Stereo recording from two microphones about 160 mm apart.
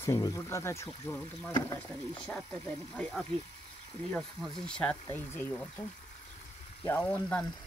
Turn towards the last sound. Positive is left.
turn(degrees=10)  # may be behind; listen again after turning